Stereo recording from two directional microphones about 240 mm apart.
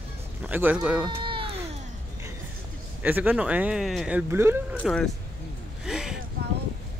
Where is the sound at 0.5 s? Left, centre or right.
Centre.